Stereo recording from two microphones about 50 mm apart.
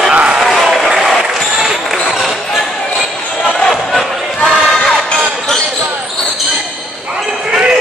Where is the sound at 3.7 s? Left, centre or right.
Centre.